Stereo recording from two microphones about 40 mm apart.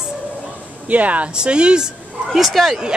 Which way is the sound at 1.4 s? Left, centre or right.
Right.